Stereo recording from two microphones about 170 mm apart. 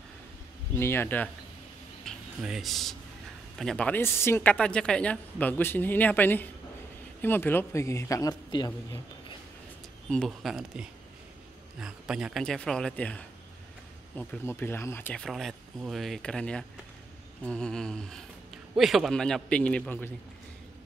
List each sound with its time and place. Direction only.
0.7 s a woman's voice: 15° left (ahead or behind)
2.0 s a woman's voice: centre (ahead or behind); by 8.7 s 25° left (ahead or behind)
10.0 s a woman's voice: 5° left (ahead or behind)
15.2 s speech: centre (ahead or behind)